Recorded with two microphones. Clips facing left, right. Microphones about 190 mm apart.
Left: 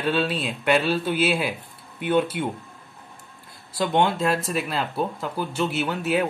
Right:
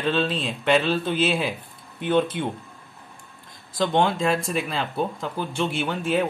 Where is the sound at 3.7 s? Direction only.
5° left (ahead or behind).